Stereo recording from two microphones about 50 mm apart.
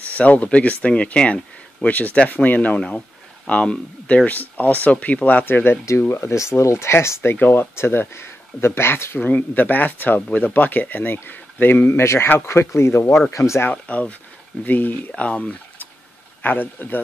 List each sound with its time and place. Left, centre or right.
0.1 s speech: left
3.4 s speech: centre
4.3 s speech: left
5.4 s speech: left
5.9 s speech: left
7.3 s speech: left
7.7 s speech: left
9.2 s speech: left
11.9 s speech: left
13.7 s speech: left
15.0 s speech: left
16.4 s speech: left